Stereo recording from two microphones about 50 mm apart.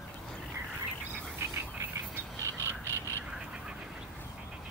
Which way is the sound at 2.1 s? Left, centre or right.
Right.